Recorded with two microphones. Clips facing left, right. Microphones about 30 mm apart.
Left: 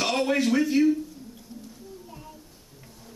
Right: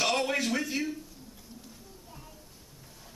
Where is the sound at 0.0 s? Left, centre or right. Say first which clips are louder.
Left 4 dB; centre.